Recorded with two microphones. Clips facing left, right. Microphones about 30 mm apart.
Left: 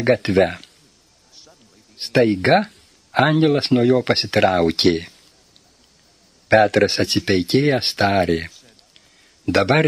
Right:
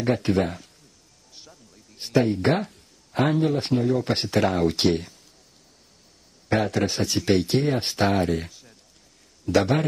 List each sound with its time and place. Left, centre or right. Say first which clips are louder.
0.0 s speech: left 7 dB; left
2.0 s speech: left 5 dB; left
3.9 s speech: left 6 dB; left
6.5 s speech: left 9 dB; left
9.5 s speech: left 5 dB; left